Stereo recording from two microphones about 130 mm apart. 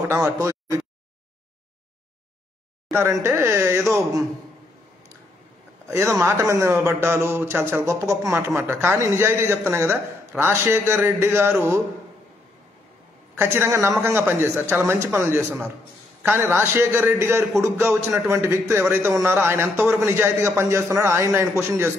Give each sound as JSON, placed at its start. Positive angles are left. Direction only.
{"t": 0.0, "sound": "a man's voice", "side_deg": -25}
{"t": 2.9, "sound": "a man's voice", "side_deg": -20}
{"t": 5.9, "sound": "a man's voice", "side_deg": -20}
{"t": 13.4, "sound": "a man's voice", "side_deg": -20}